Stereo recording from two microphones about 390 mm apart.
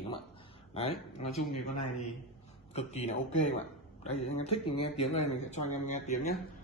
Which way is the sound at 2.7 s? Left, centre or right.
Centre.